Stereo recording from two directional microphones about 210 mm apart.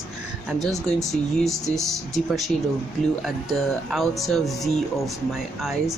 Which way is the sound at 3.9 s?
Centre (ahead or behind).